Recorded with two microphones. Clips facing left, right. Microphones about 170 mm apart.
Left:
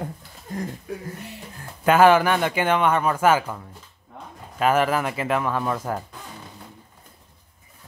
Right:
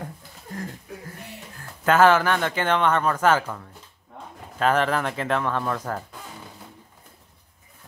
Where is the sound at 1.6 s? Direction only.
15° left (ahead or behind).